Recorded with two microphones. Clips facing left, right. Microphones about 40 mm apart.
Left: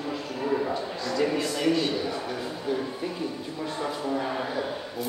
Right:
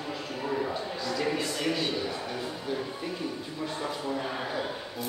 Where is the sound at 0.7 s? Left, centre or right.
Centre.